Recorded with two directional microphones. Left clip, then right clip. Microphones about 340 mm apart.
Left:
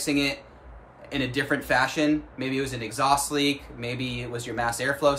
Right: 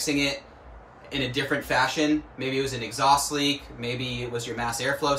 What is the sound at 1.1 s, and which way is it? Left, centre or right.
Speech, centre.